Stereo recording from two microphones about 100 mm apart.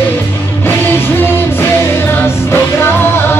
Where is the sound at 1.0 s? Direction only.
20° left (ahead or behind).